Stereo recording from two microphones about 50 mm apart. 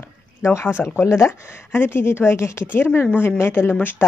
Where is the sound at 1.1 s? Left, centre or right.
Left.